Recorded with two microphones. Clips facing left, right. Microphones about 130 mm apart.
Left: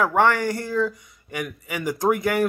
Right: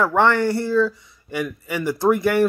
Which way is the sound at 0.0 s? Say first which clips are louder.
Right 2 dB; 15° left (ahead or behind).